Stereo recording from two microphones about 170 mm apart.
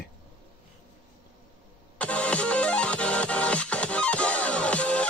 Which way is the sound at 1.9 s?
5° left (ahead or behind).